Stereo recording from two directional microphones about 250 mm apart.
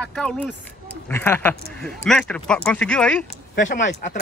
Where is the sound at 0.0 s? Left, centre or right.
Centre.